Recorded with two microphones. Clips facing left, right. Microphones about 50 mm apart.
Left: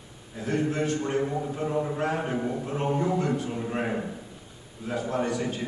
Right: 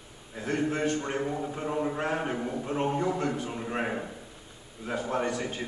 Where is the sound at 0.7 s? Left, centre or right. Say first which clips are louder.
Left 1 dB; right.